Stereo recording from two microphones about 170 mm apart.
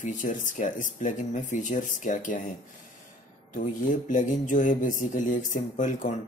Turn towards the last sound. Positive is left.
turn(degrees=50)  # may be behind; listen again after turning